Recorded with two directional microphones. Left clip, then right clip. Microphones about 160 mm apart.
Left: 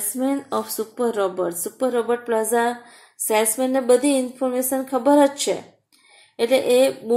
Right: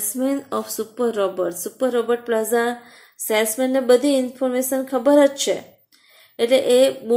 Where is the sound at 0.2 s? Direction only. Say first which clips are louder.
Even; 5° left (ahead or behind).